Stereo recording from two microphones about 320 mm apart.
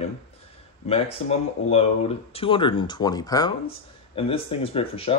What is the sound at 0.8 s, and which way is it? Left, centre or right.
Speech, centre.